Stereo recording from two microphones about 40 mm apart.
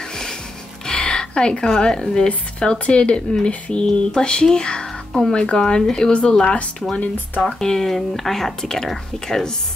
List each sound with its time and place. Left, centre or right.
0.8 s speech: centre